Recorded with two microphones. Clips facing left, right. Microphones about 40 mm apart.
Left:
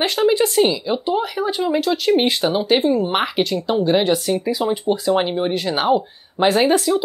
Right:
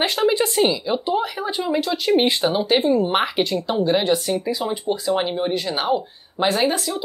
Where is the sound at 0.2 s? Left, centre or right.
Centre.